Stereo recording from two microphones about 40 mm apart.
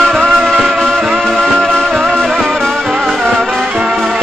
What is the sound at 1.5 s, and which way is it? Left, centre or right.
Music, centre.